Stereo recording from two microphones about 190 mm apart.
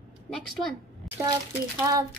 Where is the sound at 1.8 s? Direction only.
20° right (ahead or behind).